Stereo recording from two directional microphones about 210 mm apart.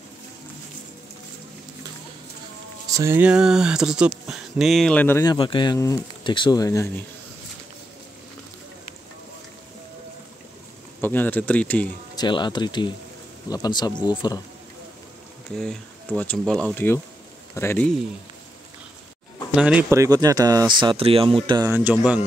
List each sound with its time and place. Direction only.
2.9 s speech: 15° right (ahead or behind); by 6.9 s 15° left (ahead or behind)
11.0 s speech: 10° left (ahead or behind)
12.2 s speech: 20° left (ahead or behind)
15.5 s speech: 5° left (ahead or behind)
19.5 s speech: 5° right (ahead or behind)